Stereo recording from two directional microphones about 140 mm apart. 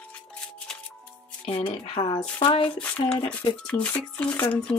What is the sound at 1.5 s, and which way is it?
Speech, 40° left (ahead or behind).